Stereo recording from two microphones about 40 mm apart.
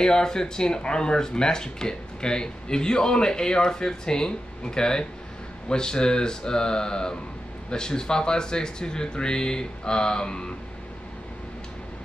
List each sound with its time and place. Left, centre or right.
0.0 s speech: centre